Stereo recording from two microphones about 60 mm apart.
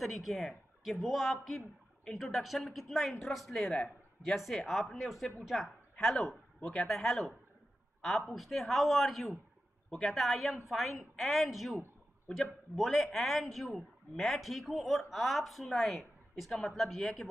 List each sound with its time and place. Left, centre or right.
0.0 s a woman's voice: centre
6.6 s speech: centre
6.9 s a man's voice: centre